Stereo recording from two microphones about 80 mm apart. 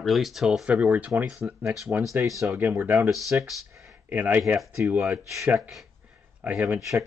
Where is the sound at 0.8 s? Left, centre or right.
Right.